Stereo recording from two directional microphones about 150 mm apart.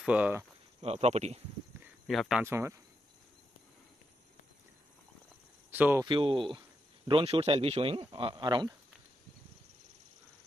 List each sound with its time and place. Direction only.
0.0 s speech: 10° right (ahead or behind)
0.7 s speech: 45° right (ahead or behind)
2.0 s speech: centre (ahead or behind)
2.4 s speech: 15° right (ahead or behind)
5.7 s speech: 15° right (ahead or behind)
6.0 s speech: 35° right (ahead or behind)